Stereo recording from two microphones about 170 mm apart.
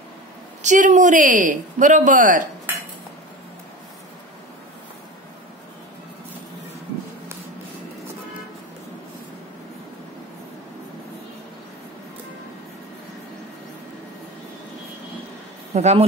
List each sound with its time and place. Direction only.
0.6 s speech: 45° right (ahead or behind)
15.7 s speech: 40° right (ahead or behind)